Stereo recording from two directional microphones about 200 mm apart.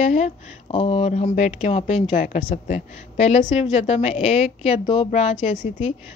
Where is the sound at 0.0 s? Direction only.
35° left (ahead or behind).